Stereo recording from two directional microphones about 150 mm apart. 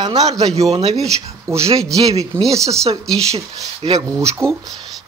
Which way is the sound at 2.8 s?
40° right (ahead or behind).